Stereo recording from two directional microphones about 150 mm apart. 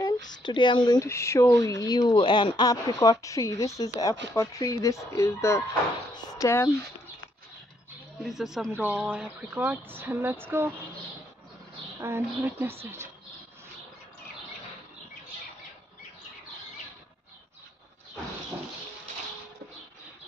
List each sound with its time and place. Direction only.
0.0 s speech: 30° left (ahead or behind)
8.2 s speech: 5° right (ahead or behind)
12.0 s speech: 20° right (ahead or behind)